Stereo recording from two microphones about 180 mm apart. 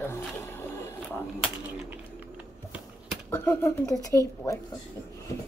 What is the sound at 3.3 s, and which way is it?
A woman's voice, 15° left (ahead or behind).